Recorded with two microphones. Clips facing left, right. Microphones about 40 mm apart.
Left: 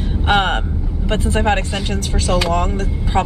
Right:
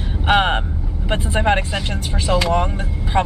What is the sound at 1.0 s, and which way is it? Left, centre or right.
Speech, centre.